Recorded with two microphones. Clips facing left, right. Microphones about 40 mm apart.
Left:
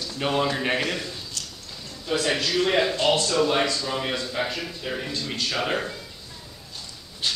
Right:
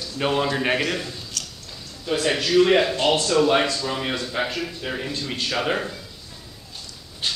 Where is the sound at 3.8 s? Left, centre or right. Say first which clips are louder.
Right 1 dB; centre.